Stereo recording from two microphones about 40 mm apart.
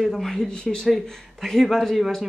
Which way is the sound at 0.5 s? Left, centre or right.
Centre.